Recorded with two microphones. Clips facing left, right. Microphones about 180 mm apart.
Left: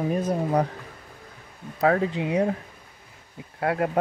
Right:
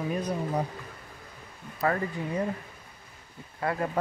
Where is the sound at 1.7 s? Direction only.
80° left.